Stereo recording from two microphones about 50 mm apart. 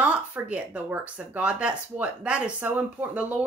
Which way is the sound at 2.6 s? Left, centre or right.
Right.